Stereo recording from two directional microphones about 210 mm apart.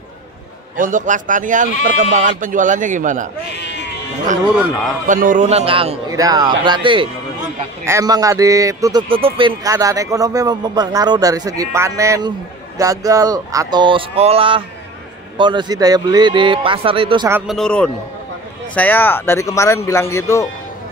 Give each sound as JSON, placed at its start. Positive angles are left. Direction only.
{"t": 0.7, "sound": "a man's voice", "side_deg": -40}
{"t": 3.4, "sound": "sheep", "side_deg": 55}
{"t": 5.0, "sound": "a man's voice", "side_deg": -40}
{"t": 17.3, "sound": "speech", "side_deg": 0}